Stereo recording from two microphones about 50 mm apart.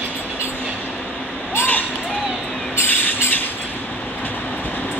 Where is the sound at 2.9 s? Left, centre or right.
Left.